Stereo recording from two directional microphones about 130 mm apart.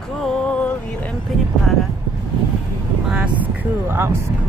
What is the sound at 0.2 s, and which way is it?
Music, 10° left (ahead or behind).